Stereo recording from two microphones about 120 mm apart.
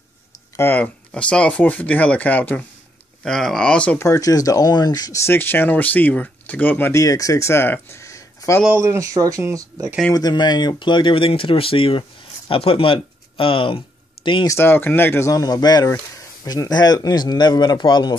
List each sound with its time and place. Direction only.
0.6 s speech: 15° left (ahead or behind)
4.0 s speech: 25° left (ahead or behind)
5.2 s speech: 20° left (ahead or behind)
8.8 s speech: 25° right (ahead or behind)
10.1 s speech: 35° left (ahead or behind)
14.5 s a man's voice: 20° left (ahead or behind); by 18.1 s 40° left (ahead or behind)